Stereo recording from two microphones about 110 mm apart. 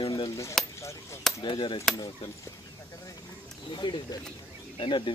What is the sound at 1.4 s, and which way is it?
Speech, 50° left (ahead or behind).